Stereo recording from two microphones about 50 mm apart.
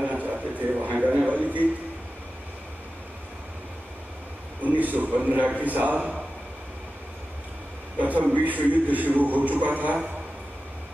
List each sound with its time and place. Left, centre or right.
0.0 s a sound: right
4.6 s a man's voice: right
8.0 s a man's voice: right